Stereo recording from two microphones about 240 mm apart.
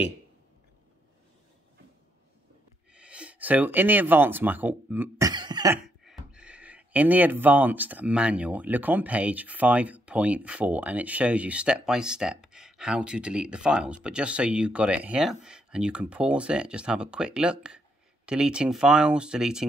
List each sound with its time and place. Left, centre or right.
2.9 s speech: centre
5.3 s cough: centre
6.0 s speech: centre